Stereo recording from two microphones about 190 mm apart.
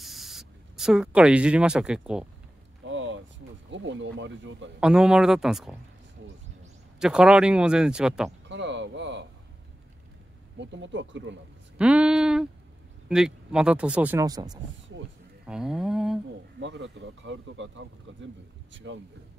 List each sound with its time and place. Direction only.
0.0 s speech: centre (ahead or behind)
2.8 s a sound: 80° right
3.7 s speech: 70° right (ahead or behind)
4.7 s speech: 5° right (ahead or behind)
7.0 s speech: 5° right (ahead or behind)
8.5 s a sound: 70° right (ahead or behind)
10.6 s speech: 70° right (ahead or behind)
11.8 s speech: 5° right (ahead or behind)
14.2 s speech: 20° right (ahead or behind)
15.4 s speech: 5° right (ahead or behind)
16.5 s speech: 75° right (ahead or behind)